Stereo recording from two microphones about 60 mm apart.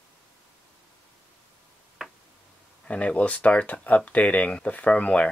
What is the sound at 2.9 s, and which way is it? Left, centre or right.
Speech, left.